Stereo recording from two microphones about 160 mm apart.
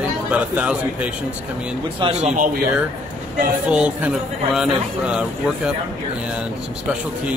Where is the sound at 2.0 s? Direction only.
40° right (ahead or behind).